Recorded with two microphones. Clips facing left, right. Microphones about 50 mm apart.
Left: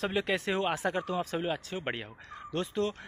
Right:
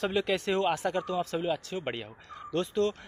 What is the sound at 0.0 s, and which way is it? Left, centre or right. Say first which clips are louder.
Speech: right 2 dB; centre.